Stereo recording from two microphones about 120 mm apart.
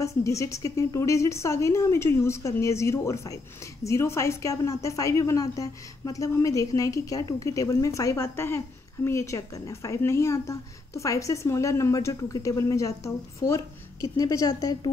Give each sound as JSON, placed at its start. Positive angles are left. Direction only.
{"t": 0.0, "sound": "a woman's voice", "side_deg": 25}